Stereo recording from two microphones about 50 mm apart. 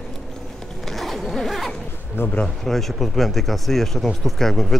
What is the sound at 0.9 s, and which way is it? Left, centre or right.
Zipper, centre.